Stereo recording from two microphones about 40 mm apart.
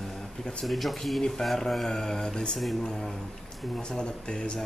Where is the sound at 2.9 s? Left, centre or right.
Centre.